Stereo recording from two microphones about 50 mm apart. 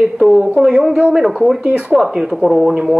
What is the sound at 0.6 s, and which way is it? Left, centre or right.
Speech, centre.